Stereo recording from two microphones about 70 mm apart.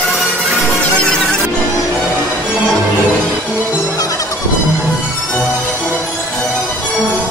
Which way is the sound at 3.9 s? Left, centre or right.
Left.